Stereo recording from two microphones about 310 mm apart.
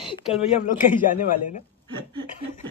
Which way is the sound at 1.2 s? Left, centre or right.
Left.